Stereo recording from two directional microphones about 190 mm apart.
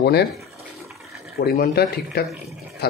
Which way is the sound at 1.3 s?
50° left (ahead or behind).